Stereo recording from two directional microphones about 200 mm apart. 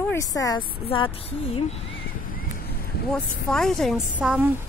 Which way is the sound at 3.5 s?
Centre (ahead or behind).